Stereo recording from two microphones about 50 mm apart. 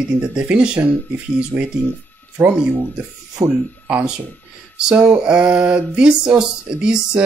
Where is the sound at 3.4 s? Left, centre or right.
Right.